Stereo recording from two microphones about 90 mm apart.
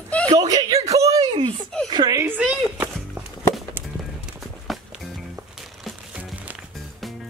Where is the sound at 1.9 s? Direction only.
55° right (ahead or behind).